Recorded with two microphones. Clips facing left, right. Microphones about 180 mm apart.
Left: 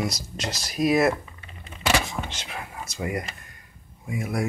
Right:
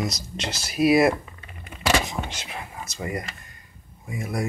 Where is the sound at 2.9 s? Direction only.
5° left (ahead or behind).